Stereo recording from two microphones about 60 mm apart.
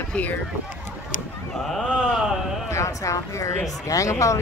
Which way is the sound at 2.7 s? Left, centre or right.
Left.